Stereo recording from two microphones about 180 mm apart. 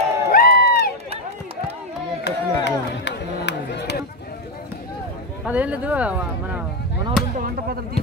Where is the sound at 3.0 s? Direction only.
70° left (ahead or behind).